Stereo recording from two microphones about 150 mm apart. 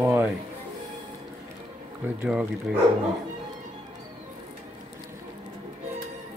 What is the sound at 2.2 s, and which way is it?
Speech, 5° right (ahead or behind).